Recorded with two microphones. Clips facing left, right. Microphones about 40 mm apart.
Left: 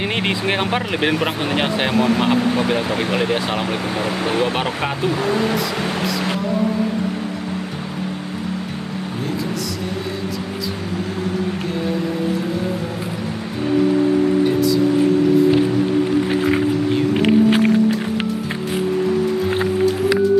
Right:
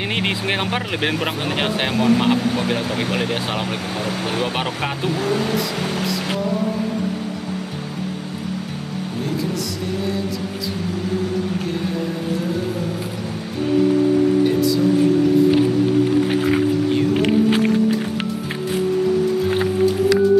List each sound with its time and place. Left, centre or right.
0.0 s speech: centre
3.8 s speech: left
4.4 s speech: centre
5.3 s speech: centre
6.0 s speech: centre
17.1 s music: centre